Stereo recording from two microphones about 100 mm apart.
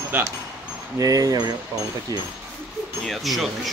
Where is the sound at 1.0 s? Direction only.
35° right (ahead or behind).